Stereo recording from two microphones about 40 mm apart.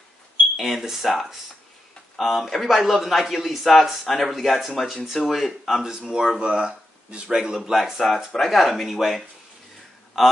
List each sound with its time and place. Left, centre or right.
0.6 s a man's voice: centre
5.9 s a man's voice: centre